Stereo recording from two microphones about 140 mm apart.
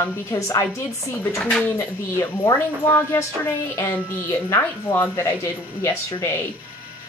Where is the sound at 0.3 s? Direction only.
25° left (ahead or behind).